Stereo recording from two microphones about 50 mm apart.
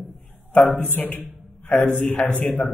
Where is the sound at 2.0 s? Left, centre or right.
Left.